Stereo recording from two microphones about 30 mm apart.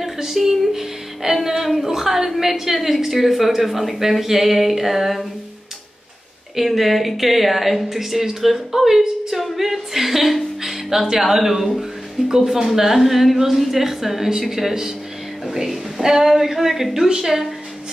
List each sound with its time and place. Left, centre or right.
0.0 s a woman's voice: centre
6.5 s a woman's voice: centre
12.3 s speech: right
12.6 s a woman's voice: centre